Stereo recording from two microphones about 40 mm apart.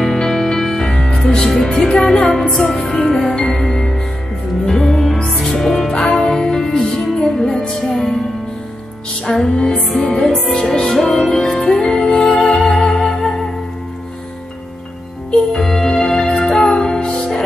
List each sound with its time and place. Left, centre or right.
0.0 s music: centre
1.5 s music: centre
9.2 s music: centre
9.6 s music: left
10.5 s music: centre
15.6 s music: centre